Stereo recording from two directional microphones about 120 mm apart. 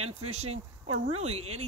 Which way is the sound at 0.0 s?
60° right (ahead or behind).